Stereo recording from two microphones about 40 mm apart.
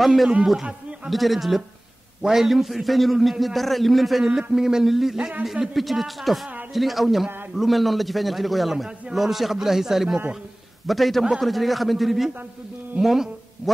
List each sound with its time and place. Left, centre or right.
0.0 s a man's voice: centre